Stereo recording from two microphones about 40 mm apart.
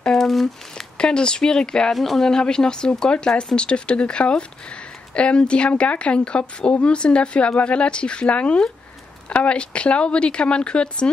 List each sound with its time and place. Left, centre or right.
0.2 s crumpling: centre
0.9 s speech: left
1.9 s speech: centre
2.2 s speech: centre